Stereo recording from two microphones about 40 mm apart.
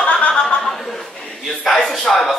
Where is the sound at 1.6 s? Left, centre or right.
Left.